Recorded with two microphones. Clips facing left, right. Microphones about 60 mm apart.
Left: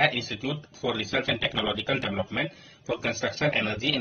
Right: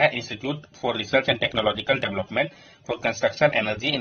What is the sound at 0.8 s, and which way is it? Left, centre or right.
Speech, right.